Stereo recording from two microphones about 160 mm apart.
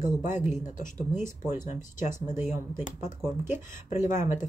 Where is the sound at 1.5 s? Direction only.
50° left (ahead or behind).